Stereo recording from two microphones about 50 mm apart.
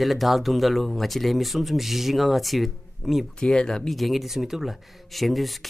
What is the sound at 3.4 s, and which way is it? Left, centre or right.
Speech, centre.